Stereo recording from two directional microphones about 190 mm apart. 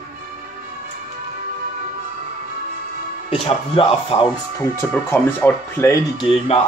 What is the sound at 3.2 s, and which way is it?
Speech, 30° left (ahead or behind).